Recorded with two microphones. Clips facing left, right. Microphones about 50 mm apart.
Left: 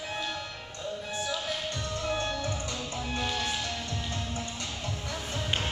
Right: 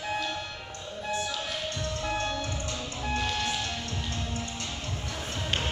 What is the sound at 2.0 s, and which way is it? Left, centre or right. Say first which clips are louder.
Music: left 1 dB; right.